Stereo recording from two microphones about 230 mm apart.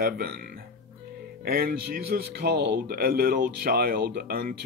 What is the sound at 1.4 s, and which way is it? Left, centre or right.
Speech, right.